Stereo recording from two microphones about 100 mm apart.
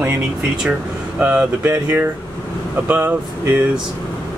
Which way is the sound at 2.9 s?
20° right (ahead or behind).